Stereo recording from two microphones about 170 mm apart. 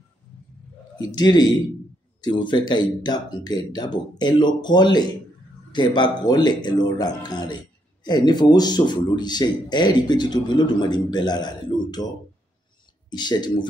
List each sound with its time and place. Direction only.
0.9 s speech: 25° left (ahead or behind)
13.1 s speech: 25° left (ahead or behind)